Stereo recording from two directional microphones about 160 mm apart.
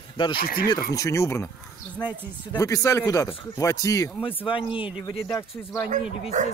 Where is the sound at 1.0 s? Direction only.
20° left (ahead or behind).